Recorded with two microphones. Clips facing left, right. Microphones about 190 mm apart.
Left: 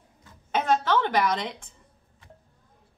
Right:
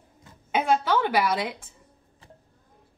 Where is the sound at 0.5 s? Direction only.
10° right (ahead or behind).